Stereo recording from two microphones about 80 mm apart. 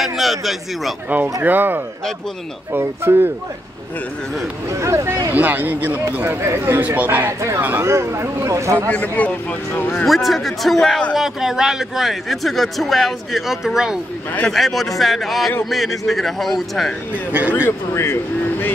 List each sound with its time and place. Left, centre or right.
0.0 s a man's voice: centre
1.4 s speech: right
4.6 s speech: right
5.3 s speech: right
7.2 s speech: right
7.9 s speech: right
8.9 s speech: centre
10.0 s a man's voice: centre
17.6 s speech: left